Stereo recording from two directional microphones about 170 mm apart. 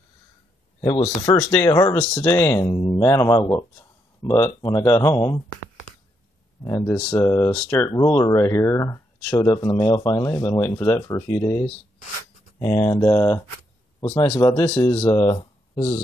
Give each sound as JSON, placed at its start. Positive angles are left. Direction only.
{"t": 0.7, "sound": "speech", "side_deg": 30}
{"t": 5.9, "sound": "a sound", "side_deg": 45}
{"t": 6.6, "sound": "speech", "side_deg": 15}
{"t": 14.4, "sound": "speech", "side_deg": 15}